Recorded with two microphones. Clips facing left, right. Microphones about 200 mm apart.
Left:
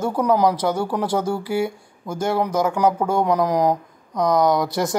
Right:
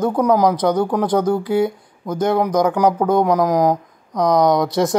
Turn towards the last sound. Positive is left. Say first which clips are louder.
# right 3 dB
turn(degrees=-20)  # may be behind; listen again after turning